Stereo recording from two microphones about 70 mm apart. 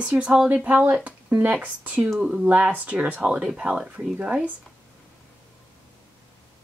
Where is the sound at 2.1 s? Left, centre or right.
Centre.